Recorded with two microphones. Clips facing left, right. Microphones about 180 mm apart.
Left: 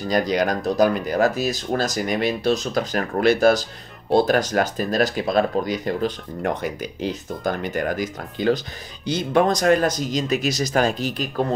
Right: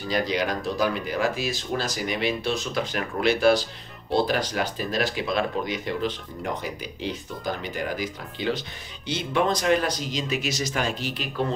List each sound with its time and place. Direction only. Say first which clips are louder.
0.1 s speech: left 5 dB; 45° left (ahead or behind)